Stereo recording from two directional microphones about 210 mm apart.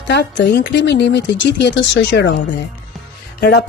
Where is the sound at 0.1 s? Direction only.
55° left (ahead or behind).